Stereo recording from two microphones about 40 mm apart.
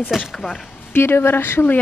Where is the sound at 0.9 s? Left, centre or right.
Left.